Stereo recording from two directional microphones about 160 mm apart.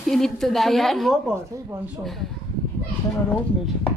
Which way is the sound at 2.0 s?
Centre (ahead or behind).